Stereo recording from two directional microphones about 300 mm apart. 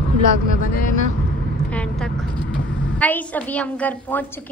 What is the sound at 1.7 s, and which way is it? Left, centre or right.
Vehicle, centre.